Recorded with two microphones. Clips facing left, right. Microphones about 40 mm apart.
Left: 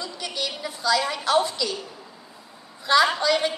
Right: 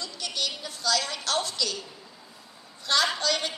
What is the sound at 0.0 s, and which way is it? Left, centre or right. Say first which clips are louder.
A woman's voice: left 2 dB; centre.